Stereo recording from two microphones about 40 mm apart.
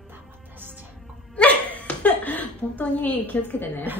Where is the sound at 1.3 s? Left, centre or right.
Left.